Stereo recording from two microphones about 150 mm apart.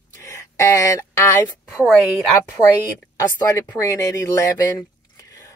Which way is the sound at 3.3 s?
25° left (ahead or behind).